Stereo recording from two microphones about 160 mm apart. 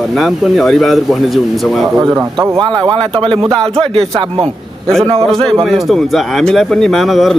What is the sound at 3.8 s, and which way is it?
Speech, 35° right (ahead or behind).